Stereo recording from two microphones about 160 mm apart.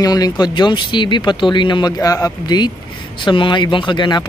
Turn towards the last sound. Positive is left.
turn(degrees=30)  # may be behind; listen again after turning